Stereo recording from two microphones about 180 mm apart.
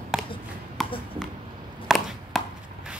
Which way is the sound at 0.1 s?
5° right (ahead or behind).